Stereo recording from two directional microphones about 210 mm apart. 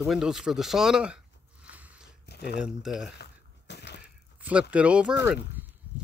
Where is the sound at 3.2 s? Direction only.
55° left (ahead or behind).